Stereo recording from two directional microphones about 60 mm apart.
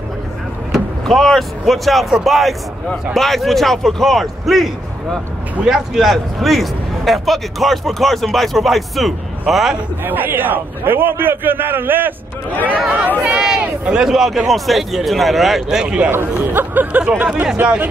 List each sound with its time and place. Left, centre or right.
0.7 s a man's voice: centre
5.7 s a man's voice: centre
10.0 s a man's voice: right
12.6 s a man's voice: right
16.5 s a man's voice: right
17.0 s speech: centre